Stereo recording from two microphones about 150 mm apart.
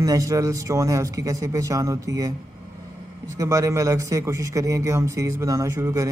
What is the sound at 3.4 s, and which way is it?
Mantra, 20° right (ahead or behind).